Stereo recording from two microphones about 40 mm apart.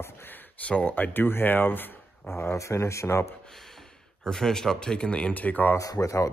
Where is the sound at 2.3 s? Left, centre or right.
Left.